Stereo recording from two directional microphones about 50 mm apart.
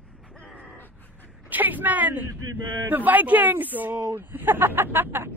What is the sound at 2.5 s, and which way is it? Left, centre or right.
Speech, right.